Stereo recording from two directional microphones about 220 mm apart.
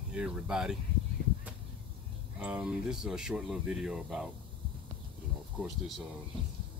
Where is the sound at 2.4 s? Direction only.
5° right (ahead or behind).